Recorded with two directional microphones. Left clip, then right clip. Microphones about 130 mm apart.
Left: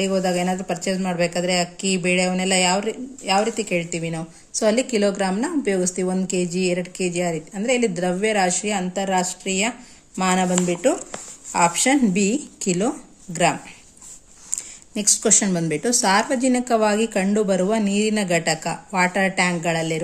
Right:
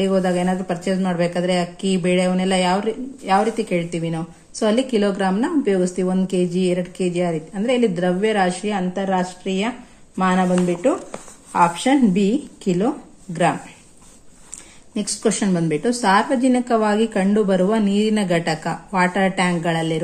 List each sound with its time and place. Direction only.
0.0 s a woman's voice: 30° left (ahead or behind)
15.0 s a woman's voice: 40° left (ahead or behind)